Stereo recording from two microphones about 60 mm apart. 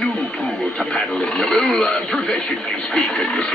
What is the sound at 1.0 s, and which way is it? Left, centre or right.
Speech, centre.